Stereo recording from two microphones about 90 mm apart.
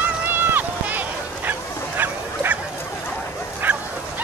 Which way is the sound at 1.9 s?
20° right (ahead or behind).